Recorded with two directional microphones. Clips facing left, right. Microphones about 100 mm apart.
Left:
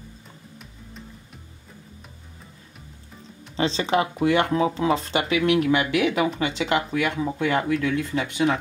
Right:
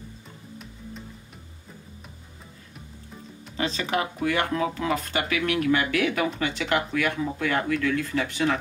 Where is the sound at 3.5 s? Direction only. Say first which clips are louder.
Left 5 dB; 30° left (ahead or behind).